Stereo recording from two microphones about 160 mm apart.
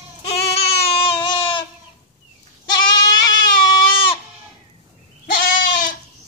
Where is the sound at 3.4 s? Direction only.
25° left (ahead or behind).